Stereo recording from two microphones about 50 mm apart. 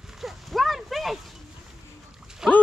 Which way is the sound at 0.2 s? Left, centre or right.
Centre.